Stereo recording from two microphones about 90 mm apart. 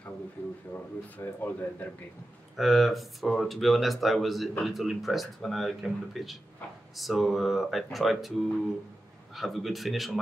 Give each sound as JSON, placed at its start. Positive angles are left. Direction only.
{"t": 0.4, "sound": "speech", "side_deg": 25}
{"t": 2.5, "sound": "speech", "side_deg": 0}
{"t": 9.3, "sound": "speech", "side_deg": 0}